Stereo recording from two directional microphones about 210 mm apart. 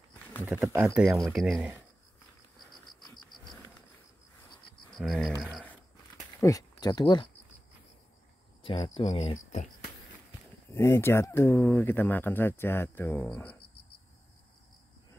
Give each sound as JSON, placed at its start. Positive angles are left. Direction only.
{"t": 0.5, "sound": "speech", "side_deg": -10}
{"t": 4.9, "sound": "speech", "side_deg": 0}
{"t": 5.4, "sound": "a sound", "side_deg": 0}
{"t": 6.4, "sound": "speech", "side_deg": 15}
{"t": 8.6, "sound": "speech", "side_deg": 25}
{"t": 10.7, "sound": "speech", "side_deg": 10}